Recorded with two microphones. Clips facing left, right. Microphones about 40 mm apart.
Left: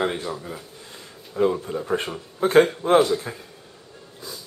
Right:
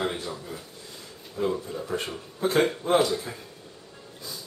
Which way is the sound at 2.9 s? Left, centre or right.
Centre.